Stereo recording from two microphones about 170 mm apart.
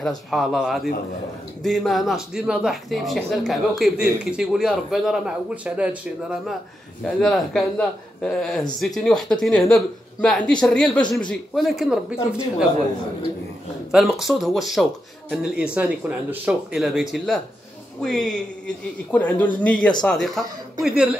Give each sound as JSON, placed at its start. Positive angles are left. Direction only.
{"t": 0.3, "sound": "speech", "side_deg": 0}
{"t": 7.1, "sound": "speech", "side_deg": 0}
{"t": 13.9, "sound": "speech", "side_deg": 0}